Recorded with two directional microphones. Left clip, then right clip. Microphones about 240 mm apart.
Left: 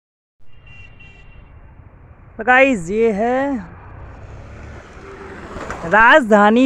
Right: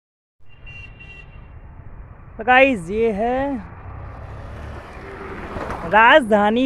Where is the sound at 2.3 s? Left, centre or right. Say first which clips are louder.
Left 1 dB; left.